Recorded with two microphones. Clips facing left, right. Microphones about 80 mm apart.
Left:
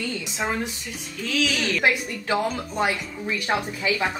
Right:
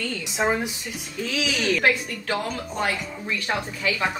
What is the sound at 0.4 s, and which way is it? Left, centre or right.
Speech, centre.